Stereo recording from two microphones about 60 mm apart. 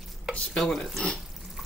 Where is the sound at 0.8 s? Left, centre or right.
Centre.